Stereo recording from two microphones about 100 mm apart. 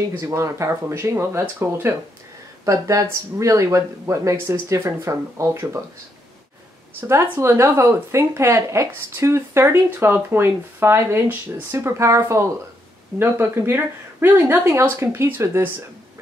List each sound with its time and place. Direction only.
0.3 s speech: 30° right (ahead or behind)
2.6 s speech: 35° right (ahead or behind)
7.0 s speech: 25° right (ahead or behind)